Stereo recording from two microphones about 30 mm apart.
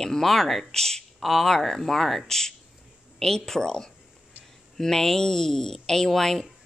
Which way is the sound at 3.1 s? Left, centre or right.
Centre.